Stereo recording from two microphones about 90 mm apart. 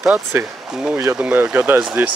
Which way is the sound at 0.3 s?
30° right (ahead or behind).